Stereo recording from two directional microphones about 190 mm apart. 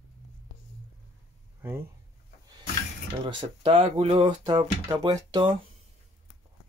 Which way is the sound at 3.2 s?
25° right (ahead or behind).